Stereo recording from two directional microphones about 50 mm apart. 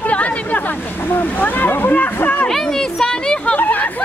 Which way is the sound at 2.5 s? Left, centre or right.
Centre.